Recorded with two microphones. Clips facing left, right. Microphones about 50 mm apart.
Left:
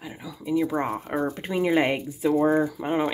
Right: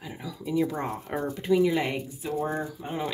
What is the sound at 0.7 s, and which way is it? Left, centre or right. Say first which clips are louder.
Speech: left 5 dB; left.